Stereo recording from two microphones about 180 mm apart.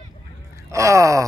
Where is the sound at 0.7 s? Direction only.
15° right (ahead or behind).